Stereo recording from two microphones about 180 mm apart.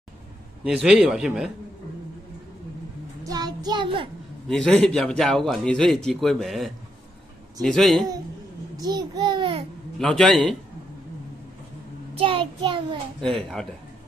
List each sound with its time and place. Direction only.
0.7 s speech: centre (ahead or behind)
3.3 s a child's voice: 20° right (ahead or behind)
4.5 s speech: centre (ahead or behind)
8.7 s a child's voice: 20° right (ahead or behind)
9.9 s speech: centre (ahead or behind)
12.2 s a child's voice: 30° right (ahead or behind)
13.2 s speech: centre (ahead or behind)